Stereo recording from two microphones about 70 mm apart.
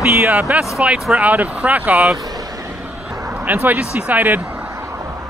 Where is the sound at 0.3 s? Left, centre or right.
Right.